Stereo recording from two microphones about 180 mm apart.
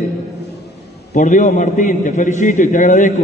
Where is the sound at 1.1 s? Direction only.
45° left (ahead or behind).